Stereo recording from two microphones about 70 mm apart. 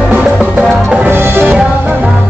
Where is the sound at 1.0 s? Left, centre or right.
Right.